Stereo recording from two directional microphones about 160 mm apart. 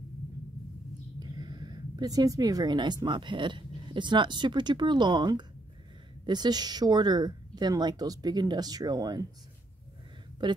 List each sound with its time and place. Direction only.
1.2 s speech: 25° right (ahead or behind)
10.4 s speech: 30° right (ahead or behind)